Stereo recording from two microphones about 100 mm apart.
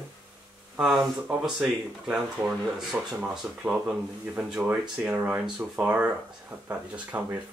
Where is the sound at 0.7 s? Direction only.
5° right (ahead or behind).